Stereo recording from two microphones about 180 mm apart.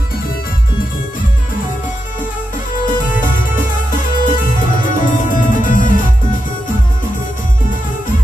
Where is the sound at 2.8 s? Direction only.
45° left (ahead or behind).